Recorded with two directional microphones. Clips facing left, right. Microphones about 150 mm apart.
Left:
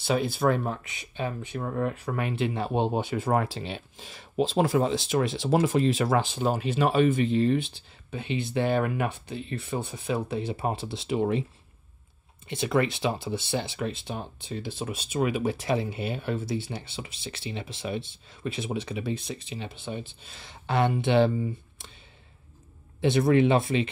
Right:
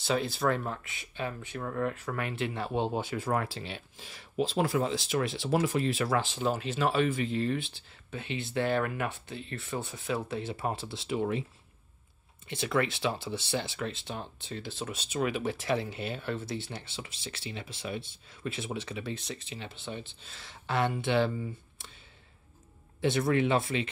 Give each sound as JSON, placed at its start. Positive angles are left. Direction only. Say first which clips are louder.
{"t": 0.0, "sound": "speech", "louder": "left 4 dB", "side_deg": 10}
{"t": 12.4, "sound": "speech", "louder": "left 4 dB", "side_deg": 20}
{"t": 22.9, "sound": "speech", "louder": "left 5 dB", "side_deg": 20}